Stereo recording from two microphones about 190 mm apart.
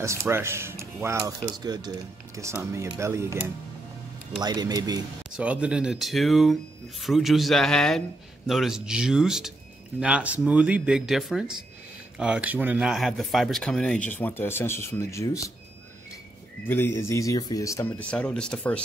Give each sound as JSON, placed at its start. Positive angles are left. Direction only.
{"t": 0.0, "sound": "speech", "side_deg": -15}
{"t": 5.3, "sound": "speech", "side_deg": -5}
{"t": 16.6, "sound": "speech", "side_deg": 10}